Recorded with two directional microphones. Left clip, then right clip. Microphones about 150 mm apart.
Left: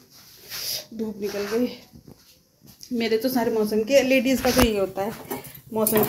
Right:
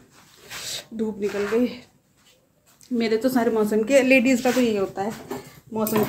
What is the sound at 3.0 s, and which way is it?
A woman's voice, 10° right (ahead or behind).